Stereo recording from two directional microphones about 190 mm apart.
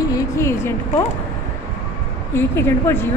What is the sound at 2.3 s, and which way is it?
Speech, 10° left (ahead or behind).